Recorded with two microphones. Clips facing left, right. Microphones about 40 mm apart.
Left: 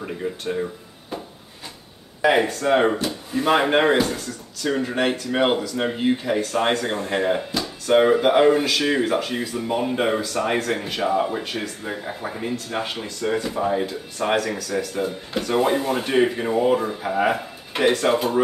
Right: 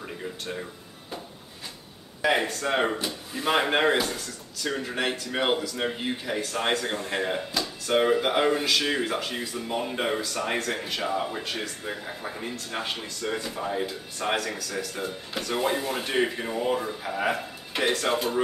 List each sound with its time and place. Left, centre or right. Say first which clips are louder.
0.0 s speech: left 7 dB; centre
2.2 s speech: left 6 dB; centre
13.8 s speech: left 5 dB; centre